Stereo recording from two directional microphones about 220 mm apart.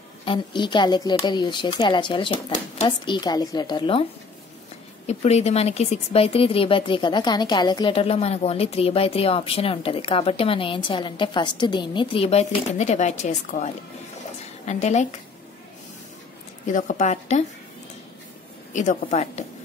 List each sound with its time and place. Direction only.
0.2 s speech: 20° left (ahead or behind)
5.0 s speech: 30° left (ahead or behind)
14.7 s speech: 30° left (ahead or behind)
16.6 s speech: 35° left (ahead or behind)
18.7 s speech: 35° left (ahead or behind)